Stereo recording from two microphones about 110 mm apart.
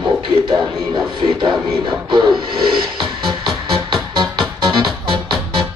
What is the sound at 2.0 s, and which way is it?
Music, 45° right (ahead or behind).